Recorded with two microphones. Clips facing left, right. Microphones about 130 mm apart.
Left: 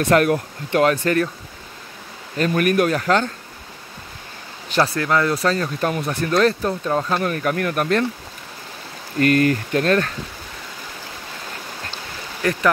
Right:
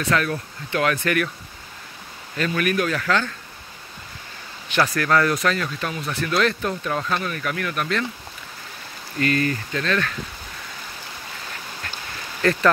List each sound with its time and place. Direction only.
0.0 s speech: 50° left (ahead or behind)
0.8 s speech: 30° left (ahead or behind)
2.3 s speech: 40° left (ahead or behind)
4.6 s speech: 30° left (ahead or behind)
5.0 s speech: 20° left (ahead or behind)
5.8 s speech: 45° left (ahead or behind)
6.0 s speech: 35° left (ahead or behind)
9.2 s speech: 55° left (ahead or behind)
12.4 s speech: 15° left (ahead or behind)